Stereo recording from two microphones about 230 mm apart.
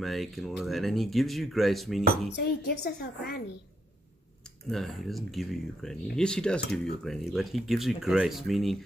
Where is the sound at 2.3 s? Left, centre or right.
Left.